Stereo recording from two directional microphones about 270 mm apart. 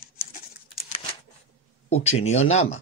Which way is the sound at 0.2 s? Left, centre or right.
Left.